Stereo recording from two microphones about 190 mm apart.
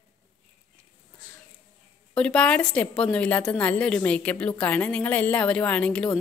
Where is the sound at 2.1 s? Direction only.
5° left (ahead or behind).